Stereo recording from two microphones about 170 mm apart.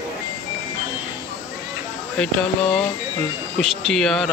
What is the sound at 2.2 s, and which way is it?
Speech, 5° left (ahead or behind).